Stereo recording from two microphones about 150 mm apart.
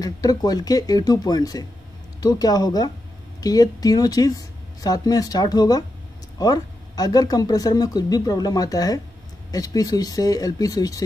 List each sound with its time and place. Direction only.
0.0 s speech: 25° left (ahead or behind)